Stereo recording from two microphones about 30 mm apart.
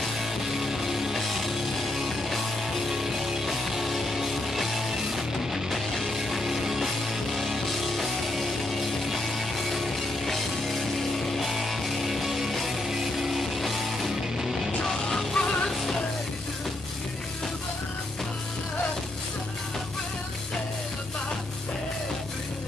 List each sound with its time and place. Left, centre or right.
0.0 s music: centre
2.9 s music: centre
14.8 s music: centre
15.3 s music: left